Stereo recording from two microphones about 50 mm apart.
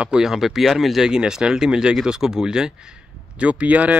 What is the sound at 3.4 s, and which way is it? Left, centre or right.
Speech, right.